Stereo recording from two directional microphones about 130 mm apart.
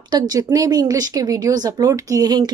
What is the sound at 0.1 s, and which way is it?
A woman's voice, 30° right (ahead or behind).